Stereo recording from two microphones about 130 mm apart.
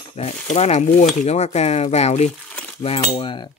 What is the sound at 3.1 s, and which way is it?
Speech, 40° left (ahead or behind).